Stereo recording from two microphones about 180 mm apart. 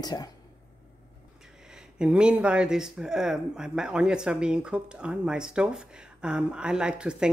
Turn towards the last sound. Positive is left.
turn(degrees=-5)  # may be behind; listen again after turning